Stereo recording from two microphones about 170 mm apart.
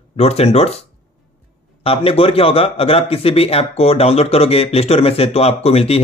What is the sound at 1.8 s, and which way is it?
A man's voice, 35° left (ahead or behind).